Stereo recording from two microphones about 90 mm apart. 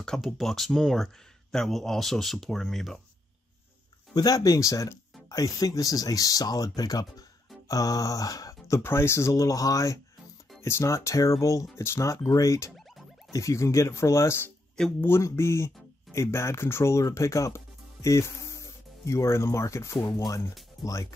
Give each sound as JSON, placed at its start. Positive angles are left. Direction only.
{"t": 0.0, "sound": "speech", "side_deg": 5}
{"t": 4.1, "sound": "speech", "side_deg": 45}